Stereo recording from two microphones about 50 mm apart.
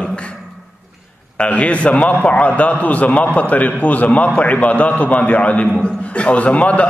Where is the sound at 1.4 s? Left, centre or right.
Left.